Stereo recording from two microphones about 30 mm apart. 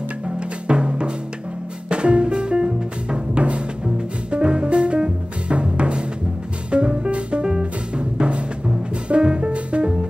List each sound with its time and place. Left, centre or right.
0.7 s music: right